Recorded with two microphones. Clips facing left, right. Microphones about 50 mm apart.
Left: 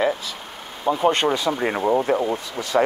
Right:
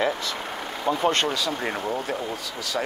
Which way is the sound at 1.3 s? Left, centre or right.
Left.